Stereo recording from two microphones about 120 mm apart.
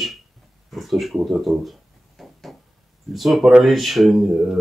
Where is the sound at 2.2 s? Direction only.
Centre (ahead or behind).